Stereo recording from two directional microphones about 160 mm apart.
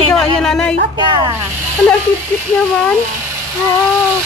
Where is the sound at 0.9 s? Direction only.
30° right (ahead or behind).